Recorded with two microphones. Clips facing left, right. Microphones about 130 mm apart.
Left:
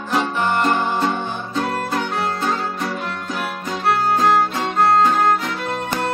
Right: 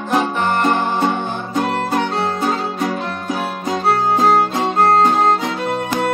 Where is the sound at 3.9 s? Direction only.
30° right (ahead or behind).